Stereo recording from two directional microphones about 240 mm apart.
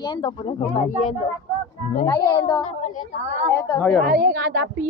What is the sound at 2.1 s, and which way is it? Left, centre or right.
A woman's voice, centre.